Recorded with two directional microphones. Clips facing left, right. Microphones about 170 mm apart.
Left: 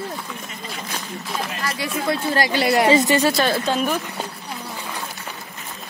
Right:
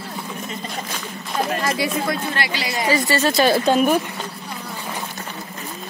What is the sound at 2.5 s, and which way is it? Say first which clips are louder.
Speech: left 7 dB; 60° left (ahead or behind).